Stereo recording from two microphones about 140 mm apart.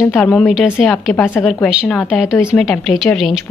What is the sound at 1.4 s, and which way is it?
A woman's voice, centre (ahead or behind).